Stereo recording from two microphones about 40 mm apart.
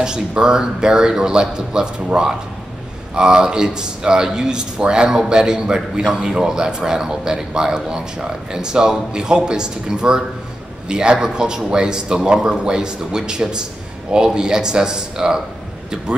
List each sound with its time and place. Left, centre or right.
0.4 s speech: centre
3.2 s speech: centre